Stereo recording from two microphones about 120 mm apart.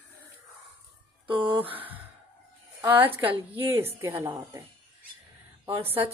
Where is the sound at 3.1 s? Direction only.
50° right (ahead or behind).